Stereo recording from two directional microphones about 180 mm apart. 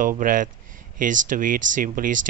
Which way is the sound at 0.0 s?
50° right (ahead or behind).